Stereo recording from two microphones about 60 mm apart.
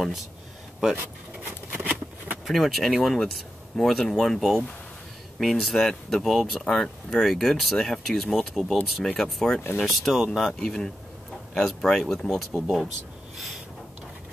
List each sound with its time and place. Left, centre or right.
0.9 s a sound: right
2.4 s speech: centre
12.5 s speech: centre